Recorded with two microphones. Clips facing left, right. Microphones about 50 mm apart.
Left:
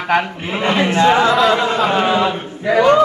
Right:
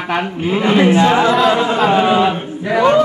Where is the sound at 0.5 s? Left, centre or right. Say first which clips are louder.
Right 3 dB; centre.